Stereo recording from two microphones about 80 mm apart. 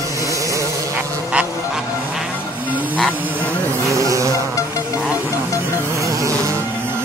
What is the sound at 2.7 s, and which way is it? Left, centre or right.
Hiss, right.